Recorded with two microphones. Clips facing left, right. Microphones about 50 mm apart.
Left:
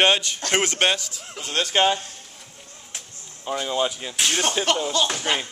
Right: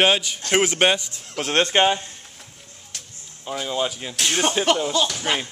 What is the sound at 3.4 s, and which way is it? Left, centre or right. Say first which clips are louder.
Speech: left 1 dB; centre.